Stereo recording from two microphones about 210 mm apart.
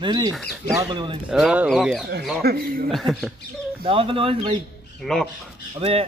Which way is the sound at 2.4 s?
45° right (ahead or behind).